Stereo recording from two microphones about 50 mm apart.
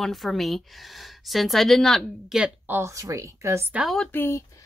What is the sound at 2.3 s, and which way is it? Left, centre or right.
Speech, centre.